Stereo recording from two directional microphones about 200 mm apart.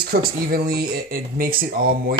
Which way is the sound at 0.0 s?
50° right (ahead or behind).